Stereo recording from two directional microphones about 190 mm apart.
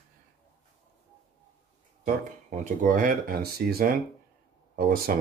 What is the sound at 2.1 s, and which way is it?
Speech, 40° right (ahead or behind).